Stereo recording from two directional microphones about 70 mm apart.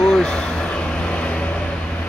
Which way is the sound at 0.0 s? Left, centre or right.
Centre.